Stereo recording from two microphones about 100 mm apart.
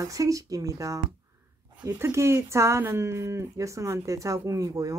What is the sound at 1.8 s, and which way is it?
Speech, 20° right (ahead or behind).